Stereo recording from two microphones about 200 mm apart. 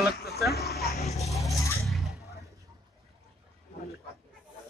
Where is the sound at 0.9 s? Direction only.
35° left (ahead or behind).